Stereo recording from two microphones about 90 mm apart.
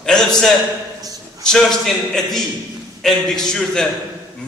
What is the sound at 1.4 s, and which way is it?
A man's voice, 5° left (ahead or behind).